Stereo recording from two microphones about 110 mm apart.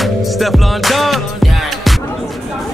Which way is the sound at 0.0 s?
Centre (ahead or behind).